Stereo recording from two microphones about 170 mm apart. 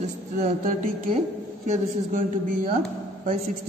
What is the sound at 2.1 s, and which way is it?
Speech, 50° right (ahead or behind).